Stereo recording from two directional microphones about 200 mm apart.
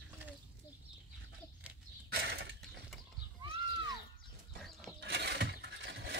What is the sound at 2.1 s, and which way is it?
Mechanisms, 55° right (ahead or behind).